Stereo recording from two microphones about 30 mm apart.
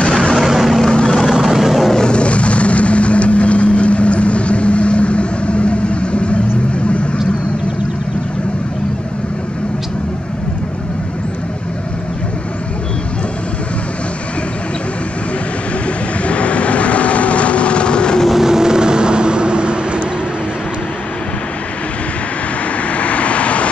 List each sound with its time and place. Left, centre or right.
0.0 s vehicle: left
0.4 s vehicle: centre
0.8 s vehicle: left
1.3 s vehicle: centre
2.0 s vehicle: left
16.3 s vehicle: left
18.3 s vehicle: centre; by 20.0 s right
22.8 s vehicle: left